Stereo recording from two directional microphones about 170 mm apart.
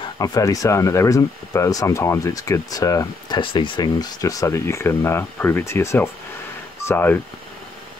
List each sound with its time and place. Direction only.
0.2 s speech: 20° left (ahead or behind)